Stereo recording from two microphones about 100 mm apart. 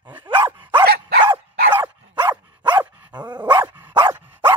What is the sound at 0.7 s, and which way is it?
Dog, 55° right (ahead or behind).